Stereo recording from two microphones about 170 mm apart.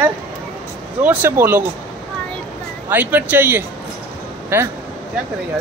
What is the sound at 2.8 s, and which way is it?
Speech, 10° right (ahead or behind).